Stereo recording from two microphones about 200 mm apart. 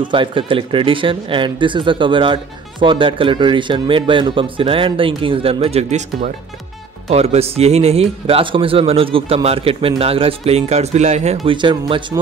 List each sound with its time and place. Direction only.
0.1 s speech: 25° right (ahead or behind)
11.4 s speech: 25° right (ahead or behind)